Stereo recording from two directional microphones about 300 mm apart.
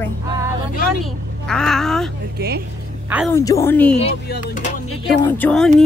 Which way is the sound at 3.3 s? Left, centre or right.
Centre.